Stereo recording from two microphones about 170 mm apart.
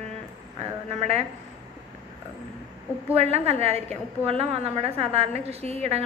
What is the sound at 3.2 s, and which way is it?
Speech, 40° right (ahead or behind).